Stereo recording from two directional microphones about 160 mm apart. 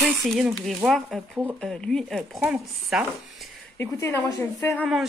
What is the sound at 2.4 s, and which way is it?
Speech, 10° right (ahead or behind).